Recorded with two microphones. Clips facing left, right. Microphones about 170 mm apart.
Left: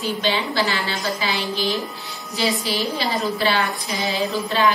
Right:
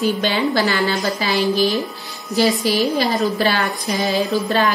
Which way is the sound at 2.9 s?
45° right (ahead or behind).